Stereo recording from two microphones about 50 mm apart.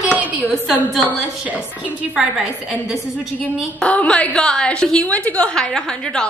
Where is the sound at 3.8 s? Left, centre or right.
Left.